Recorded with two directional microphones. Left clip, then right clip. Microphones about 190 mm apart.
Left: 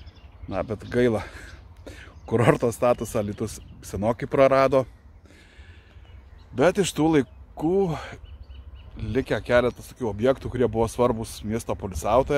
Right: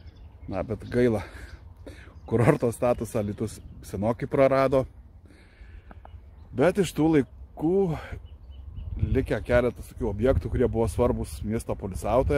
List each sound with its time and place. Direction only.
0.5 s speech: centre (ahead or behind)
6.5 s speech: centre (ahead or behind)